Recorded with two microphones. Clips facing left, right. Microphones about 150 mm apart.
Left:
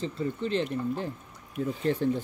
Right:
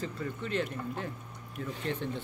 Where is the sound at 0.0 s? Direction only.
30° left (ahead or behind).